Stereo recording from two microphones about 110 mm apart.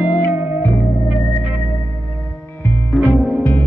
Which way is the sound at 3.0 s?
5° left (ahead or behind).